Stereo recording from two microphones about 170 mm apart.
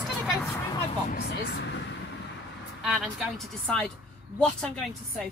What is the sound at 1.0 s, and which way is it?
Speech, 75° left (ahead or behind).